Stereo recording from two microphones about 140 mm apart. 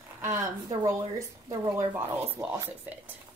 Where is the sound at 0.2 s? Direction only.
20° right (ahead or behind).